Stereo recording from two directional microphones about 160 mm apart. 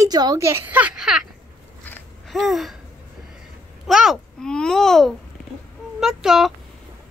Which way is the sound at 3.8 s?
Centre (ahead or behind).